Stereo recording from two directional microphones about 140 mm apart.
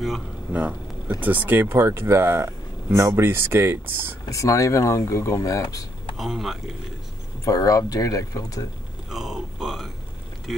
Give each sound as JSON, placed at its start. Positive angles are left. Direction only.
{"t": 0.5, "sound": "a sound", "side_deg": -10}
{"t": 1.2, "sound": "speech", "side_deg": -10}
{"t": 4.3, "sound": "speech", "side_deg": 20}
{"t": 6.1, "sound": "speech", "side_deg": 0}
{"t": 7.4, "sound": "speech", "side_deg": 25}
{"t": 9.1, "sound": "grunt", "side_deg": 0}